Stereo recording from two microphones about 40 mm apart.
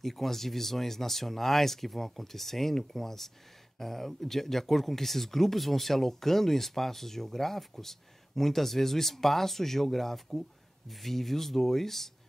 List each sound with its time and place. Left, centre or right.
0.0 s speech: centre